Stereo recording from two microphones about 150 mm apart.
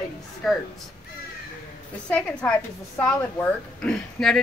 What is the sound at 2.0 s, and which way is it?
A woman's voice, 5° left (ahead or behind).